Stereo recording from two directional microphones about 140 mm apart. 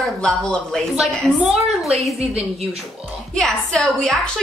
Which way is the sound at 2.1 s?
45° right (ahead or behind).